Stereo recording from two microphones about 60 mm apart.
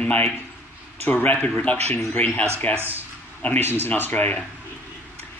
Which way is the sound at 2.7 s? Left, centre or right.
Right.